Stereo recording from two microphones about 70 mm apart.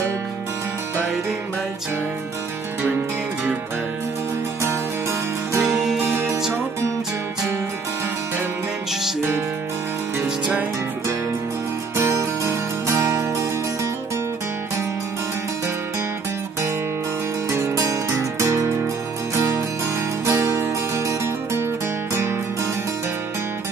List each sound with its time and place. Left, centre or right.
5.6 s music: centre
6.0 s music: right
10.2 s music: centre
12.0 s music: right
17.5 s music: right
19.3 s music: right